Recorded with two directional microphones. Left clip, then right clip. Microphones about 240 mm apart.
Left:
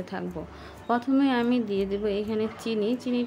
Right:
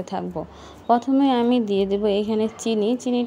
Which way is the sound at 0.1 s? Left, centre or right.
Centre.